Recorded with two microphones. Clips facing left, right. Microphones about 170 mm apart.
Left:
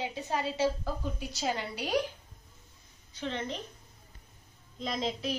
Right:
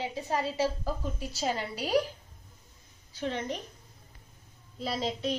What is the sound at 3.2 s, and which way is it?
Speech, 10° right (ahead or behind).